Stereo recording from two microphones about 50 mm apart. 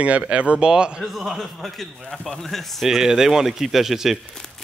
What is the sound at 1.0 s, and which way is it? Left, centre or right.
Speech, centre.